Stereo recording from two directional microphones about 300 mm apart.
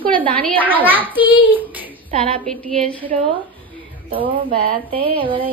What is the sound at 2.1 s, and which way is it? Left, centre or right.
Speech, centre.